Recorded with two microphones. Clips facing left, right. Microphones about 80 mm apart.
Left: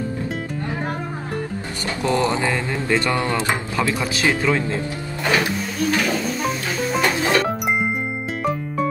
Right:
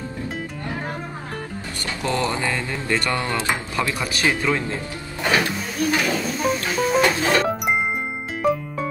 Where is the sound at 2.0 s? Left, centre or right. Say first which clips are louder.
Left 3 dB; centre.